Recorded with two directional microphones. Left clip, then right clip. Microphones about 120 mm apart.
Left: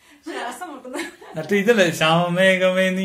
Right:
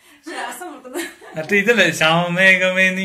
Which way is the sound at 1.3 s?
25° left (ahead or behind).